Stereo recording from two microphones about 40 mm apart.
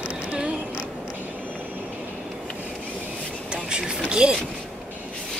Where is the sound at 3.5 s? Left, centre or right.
Right.